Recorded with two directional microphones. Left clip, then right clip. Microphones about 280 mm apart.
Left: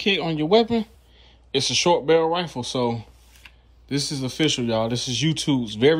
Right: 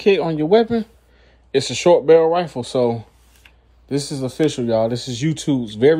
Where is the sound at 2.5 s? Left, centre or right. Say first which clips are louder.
Right 3 dB; centre.